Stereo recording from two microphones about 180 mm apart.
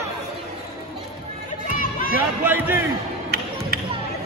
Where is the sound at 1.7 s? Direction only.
50° left (ahead or behind).